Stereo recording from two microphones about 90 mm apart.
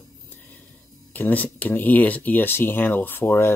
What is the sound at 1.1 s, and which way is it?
Speech, 20° left (ahead or behind).